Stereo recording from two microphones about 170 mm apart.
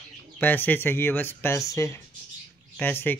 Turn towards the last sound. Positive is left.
turn(degrees=10)  # may be behind; listen again after turning